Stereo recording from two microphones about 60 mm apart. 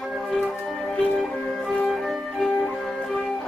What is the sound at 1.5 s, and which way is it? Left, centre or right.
Music, centre.